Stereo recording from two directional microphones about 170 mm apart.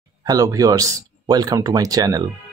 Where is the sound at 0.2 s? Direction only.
20° right (ahead or behind).